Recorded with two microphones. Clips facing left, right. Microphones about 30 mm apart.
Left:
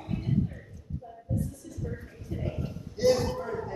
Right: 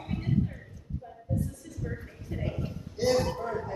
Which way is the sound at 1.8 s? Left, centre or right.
Right.